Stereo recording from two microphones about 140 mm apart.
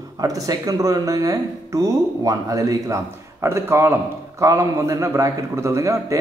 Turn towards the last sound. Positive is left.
turn(degrees=-20)  # may be behind; listen again after turning